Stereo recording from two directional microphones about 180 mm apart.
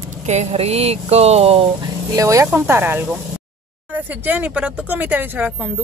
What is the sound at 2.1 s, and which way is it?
Speech, 15° right (ahead or behind).